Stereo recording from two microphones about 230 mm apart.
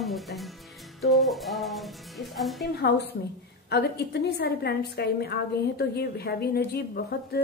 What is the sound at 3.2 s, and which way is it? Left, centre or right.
A woman's voice, left.